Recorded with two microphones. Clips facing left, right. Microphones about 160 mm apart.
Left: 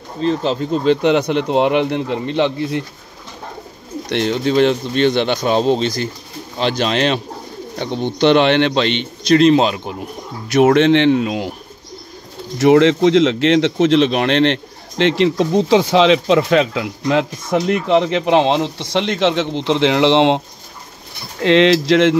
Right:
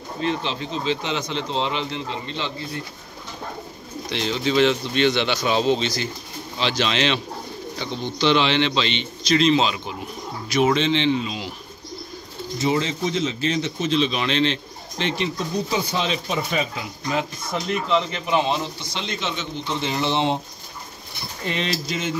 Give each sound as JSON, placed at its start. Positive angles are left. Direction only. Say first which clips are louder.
{"t": 0.2, "sound": "speech", "louder": "left 8 dB", "side_deg": 40}
{"t": 4.1, "sound": "a man's voice", "louder": "left 6 dB", "side_deg": 55}
{"t": 7.7, "sound": "speech", "louder": "left 9 dB", "side_deg": 55}
{"t": 10.5, "sound": "speech", "louder": "left 8 dB", "side_deg": 60}
{"t": 12.5, "sound": "speech", "louder": "left 12 dB", "side_deg": 75}
{"t": 21.4, "sound": "speech", "louder": "left 15 dB", "side_deg": 90}